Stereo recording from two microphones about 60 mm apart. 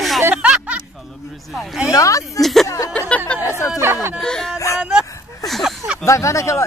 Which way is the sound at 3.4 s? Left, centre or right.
Left.